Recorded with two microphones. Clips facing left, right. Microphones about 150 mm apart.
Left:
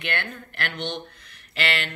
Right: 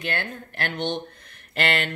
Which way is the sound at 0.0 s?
40° right (ahead or behind).